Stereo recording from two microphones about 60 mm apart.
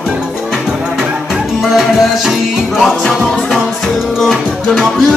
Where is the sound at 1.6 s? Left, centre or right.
Centre.